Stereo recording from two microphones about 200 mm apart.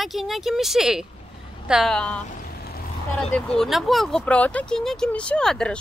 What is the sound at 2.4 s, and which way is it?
Vehicle, 50° left (ahead or behind).